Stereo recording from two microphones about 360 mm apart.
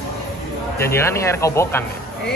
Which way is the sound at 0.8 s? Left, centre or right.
Centre.